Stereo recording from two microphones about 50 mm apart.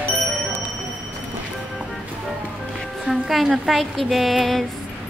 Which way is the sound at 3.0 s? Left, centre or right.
Centre.